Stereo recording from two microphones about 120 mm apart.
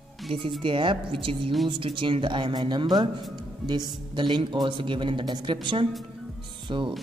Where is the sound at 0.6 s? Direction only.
45° right (ahead or behind).